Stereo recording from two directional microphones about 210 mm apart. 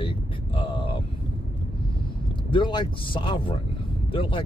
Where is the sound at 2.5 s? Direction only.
20° left (ahead or behind).